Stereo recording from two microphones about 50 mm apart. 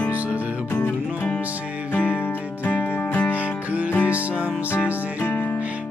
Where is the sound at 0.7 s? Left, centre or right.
Left.